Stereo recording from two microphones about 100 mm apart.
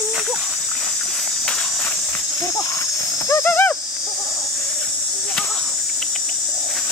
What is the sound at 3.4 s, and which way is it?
Horse, 20° left (ahead or behind).